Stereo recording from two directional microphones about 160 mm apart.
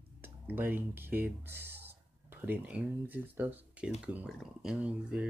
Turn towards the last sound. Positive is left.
turn(degrees=-10)  # may be behind; listen again after turning